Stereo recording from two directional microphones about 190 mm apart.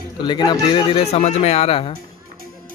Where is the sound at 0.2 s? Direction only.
25° left (ahead or behind).